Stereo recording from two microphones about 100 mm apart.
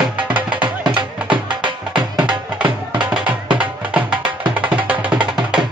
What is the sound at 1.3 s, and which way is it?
Music, 50° right (ahead or behind).